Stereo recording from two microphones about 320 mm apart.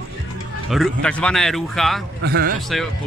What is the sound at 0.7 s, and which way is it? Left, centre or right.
A man's voice, centre.